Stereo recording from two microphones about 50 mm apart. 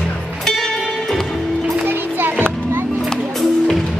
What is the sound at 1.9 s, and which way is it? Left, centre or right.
Children playing, right.